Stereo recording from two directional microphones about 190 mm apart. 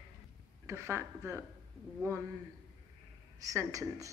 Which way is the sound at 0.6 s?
15° right (ahead or behind).